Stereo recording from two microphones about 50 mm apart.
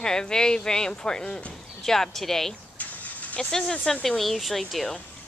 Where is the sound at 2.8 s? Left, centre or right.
Left.